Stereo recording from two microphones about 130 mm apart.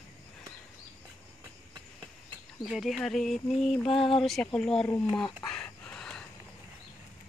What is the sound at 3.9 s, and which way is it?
Speech, 45° left (ahead or behind).